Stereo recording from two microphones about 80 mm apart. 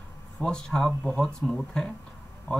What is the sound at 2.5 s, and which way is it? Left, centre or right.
Speech, centre.